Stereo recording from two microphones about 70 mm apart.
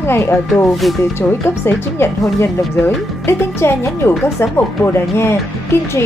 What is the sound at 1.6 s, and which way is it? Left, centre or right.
A woman's voice, left.